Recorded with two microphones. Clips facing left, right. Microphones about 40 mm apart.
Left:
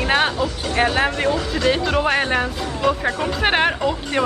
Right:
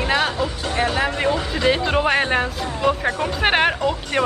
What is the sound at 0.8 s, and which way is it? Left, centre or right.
Speech, left.